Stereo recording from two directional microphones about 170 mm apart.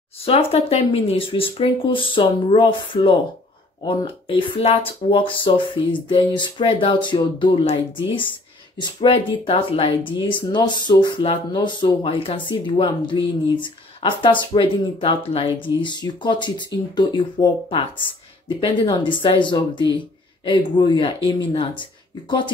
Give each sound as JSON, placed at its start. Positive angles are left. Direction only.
{"t": 0.2, "sound": "speech", "side_deg": 35}